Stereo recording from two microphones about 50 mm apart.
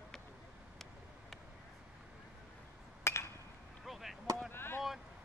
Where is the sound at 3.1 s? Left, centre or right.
Left.